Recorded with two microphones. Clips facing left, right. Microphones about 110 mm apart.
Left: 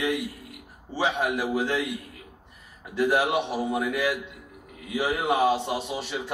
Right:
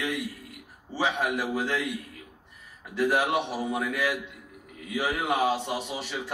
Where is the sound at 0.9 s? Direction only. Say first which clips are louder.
Left 2 dB; 15° left (ahead or behind).